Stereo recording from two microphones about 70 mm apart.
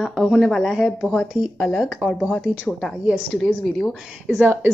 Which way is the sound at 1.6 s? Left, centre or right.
Centre.